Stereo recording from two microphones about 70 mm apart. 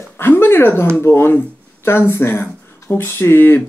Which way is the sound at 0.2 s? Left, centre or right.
Left.